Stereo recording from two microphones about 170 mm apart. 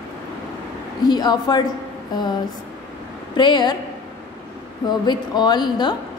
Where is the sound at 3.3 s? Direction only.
25° left (ahead or behind).